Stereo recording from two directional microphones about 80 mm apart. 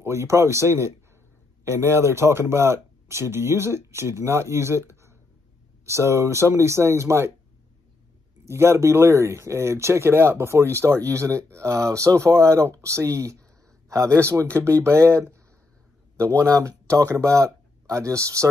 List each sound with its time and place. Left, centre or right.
0.0 s speech: right
8.5 s speech: right